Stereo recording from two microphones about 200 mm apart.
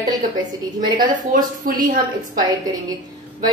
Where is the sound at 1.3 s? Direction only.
45° right (ahead or behind).